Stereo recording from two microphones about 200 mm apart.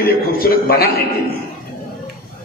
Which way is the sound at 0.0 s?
50° left (ahead or behind).